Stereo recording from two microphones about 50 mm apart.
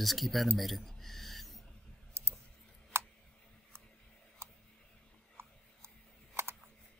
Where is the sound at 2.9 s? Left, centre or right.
Right.